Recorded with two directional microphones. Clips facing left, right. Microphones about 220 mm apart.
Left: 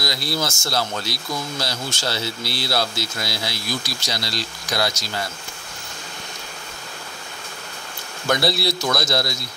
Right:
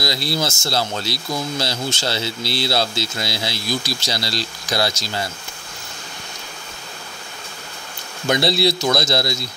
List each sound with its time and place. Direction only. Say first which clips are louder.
0.0 s speech: right 3 dB; 30° right (ahead or behind)
8.3 s speech: right 3 dB; 25° right (ahead or behind)